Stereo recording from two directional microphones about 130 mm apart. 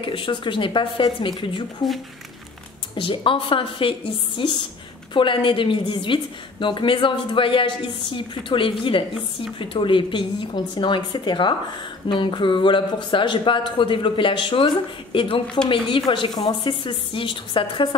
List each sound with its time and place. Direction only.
0.0 s a woman's voice: 40° left (ahead or behind)
2.9 s a woman's voice: 40° left (ahead or behind)